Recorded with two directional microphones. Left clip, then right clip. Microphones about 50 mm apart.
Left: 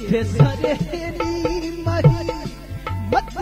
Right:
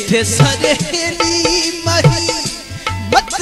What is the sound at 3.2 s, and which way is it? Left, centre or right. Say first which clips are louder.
Music: right 8 dB; right.